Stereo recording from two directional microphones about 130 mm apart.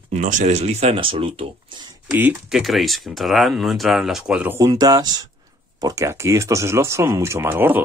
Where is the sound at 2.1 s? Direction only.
20° right (ahead or behind).